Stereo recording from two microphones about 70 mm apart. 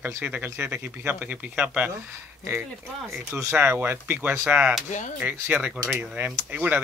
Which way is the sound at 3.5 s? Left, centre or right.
Right.